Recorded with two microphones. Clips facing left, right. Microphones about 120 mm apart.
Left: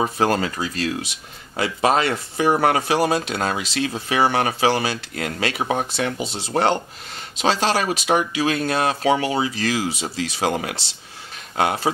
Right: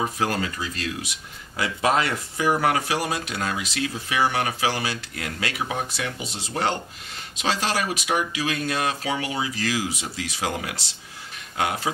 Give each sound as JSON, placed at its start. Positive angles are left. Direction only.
{"t": 0.0, "sound": "speech", "side_deg": 30}
{"t": 1.6, "sound": "speech", "side_deg": 30}